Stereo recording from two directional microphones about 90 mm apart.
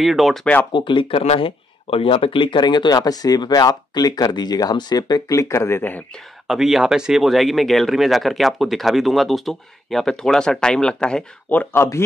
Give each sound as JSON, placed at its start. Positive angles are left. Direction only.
{"t": 0.0, "sound": "speech", "side_deg": 0}
{"t": 0.7, "sound": "speech", "side_deg": 65}
{"t": 6.4, "sound": "speech", "side_deg": -5}
{"t": 11.7, "sound": "speech", "side_deg": 30}